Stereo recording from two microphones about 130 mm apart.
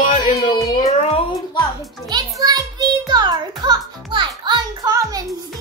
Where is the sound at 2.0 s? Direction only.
30° right (ahead or behind).